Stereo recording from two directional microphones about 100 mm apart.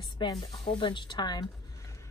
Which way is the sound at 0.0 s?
50° left (ahead or behind).